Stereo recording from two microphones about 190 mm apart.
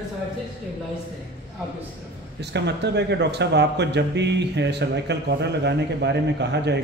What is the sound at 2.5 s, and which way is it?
Speech, 65° right (ahead or behind).